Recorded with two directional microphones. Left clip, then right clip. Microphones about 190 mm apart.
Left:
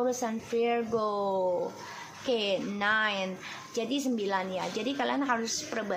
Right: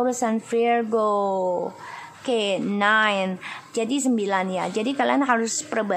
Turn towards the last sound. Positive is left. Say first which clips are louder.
# right 8 dB
turn(degrees=-30)  # may be behind; listen again after turning